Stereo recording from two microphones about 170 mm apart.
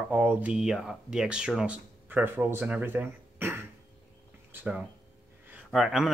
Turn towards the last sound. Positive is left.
turn(degrees=0)  # may be behind; listen again after turning